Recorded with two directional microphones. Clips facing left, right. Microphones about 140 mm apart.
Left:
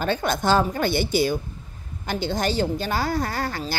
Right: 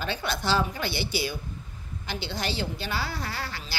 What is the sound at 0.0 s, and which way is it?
A woman's voice, 45° left (ahead or behind).